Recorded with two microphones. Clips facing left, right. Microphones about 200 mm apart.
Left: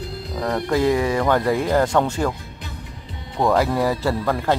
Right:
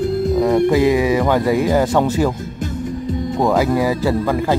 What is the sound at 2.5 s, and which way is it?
Music, 45° right (ahead or behind).